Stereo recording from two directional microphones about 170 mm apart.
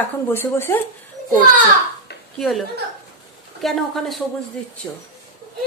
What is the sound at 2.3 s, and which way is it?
A woman's voice, centre (ahead or behind).